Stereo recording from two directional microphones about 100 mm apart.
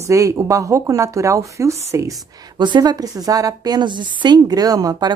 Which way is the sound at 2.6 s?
45° right (ahead or behind).